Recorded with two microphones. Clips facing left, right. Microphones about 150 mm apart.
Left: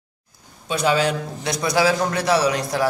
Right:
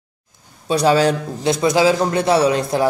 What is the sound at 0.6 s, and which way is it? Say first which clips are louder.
Speech: right 5 dB; 35° right (ahead or behind).